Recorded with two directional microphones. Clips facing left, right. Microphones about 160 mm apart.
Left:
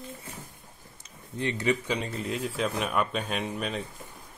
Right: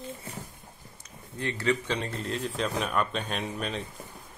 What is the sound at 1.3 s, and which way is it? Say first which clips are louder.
Speech: left 1 dB; 15° left (ahead or behind).